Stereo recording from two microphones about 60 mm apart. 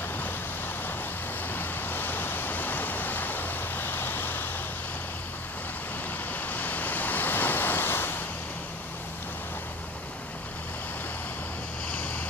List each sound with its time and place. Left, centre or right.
1.5 s vehicle: left
6.3 s waves: left